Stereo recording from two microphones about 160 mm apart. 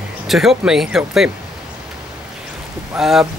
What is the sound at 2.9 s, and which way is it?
Speech, 5° right (ahead or behind).